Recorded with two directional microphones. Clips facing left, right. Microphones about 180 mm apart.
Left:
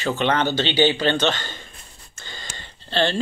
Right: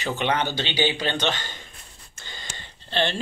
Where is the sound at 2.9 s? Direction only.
15° right (ahead or behind).